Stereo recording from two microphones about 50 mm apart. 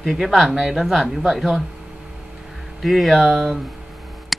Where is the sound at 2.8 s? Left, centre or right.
Centre.